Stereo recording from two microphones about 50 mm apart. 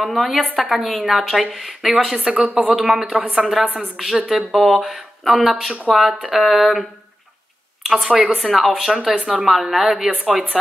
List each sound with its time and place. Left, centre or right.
0.0 s a woman's voice: centre
3.6 s a woman's voice: right
3.9 s a woman's voice: centre
9.2 s a woman's voice: centre